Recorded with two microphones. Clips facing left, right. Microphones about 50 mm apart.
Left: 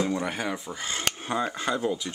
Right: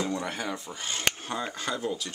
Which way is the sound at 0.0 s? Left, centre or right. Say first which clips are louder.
Left 3 dB; centre.